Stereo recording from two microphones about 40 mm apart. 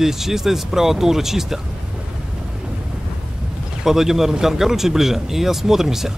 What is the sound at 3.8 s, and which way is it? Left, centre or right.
Speech, centre.